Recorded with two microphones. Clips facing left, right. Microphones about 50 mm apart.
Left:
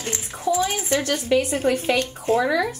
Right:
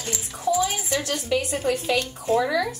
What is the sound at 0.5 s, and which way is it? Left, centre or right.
Speech, left.